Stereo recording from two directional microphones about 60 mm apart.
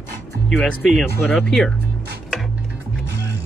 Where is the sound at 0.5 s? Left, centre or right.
Centre.